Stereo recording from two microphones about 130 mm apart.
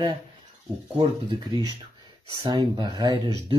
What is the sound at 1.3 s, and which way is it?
Speech, 35° right (ahead or behind).